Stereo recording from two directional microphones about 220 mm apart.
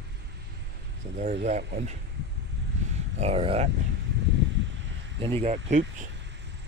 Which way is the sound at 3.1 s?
30° right (ahead or behind).